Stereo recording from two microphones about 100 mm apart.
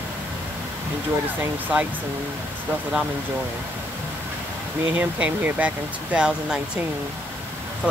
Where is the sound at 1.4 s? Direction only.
15° right (ahead or behind).